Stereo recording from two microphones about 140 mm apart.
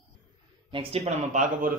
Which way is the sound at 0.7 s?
45° right (ahead or behind).